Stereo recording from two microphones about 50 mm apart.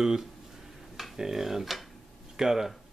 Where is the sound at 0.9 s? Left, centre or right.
Centre.